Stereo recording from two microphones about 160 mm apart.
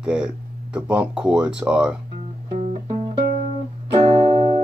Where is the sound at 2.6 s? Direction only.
45° right (ahead or behind).